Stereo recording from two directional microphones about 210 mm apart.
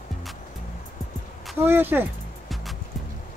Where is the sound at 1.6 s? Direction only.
10° right (ahead or behind).